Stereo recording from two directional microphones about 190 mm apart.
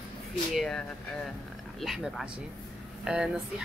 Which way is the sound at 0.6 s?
Centre (ahead or behind).